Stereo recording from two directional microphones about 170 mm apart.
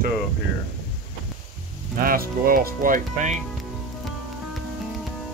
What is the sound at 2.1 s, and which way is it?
Speech, 60° right (ahead or behind).